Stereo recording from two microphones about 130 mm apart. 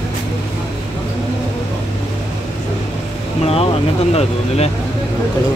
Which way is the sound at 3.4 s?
50° left (ahead or behind).